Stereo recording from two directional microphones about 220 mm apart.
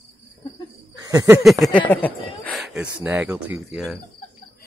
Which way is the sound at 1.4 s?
Centre (ahead or behind).